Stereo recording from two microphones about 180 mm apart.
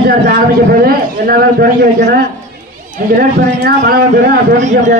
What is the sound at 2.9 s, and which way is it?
A man's voice, 50° right (ahead or behind).